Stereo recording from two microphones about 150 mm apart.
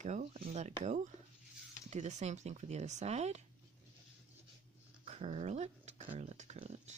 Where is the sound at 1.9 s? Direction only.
50° right (ahead or behind).